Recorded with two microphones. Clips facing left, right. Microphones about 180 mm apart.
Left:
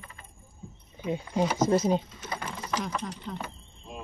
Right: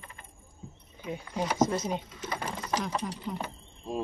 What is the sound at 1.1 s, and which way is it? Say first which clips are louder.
Speech: left 5 dB; 25° left (ahead or behind).